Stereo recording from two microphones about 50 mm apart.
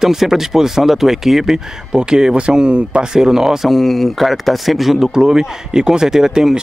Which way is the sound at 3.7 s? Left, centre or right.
Centre.